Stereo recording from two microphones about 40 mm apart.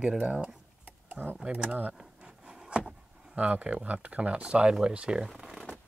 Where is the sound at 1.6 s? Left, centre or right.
Right.